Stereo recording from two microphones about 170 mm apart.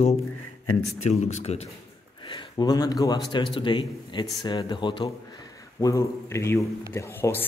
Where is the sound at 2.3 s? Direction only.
25° left (ahead or behind).